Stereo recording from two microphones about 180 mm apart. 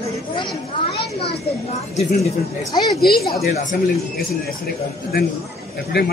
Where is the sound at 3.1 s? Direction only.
60° left (ahead or behind).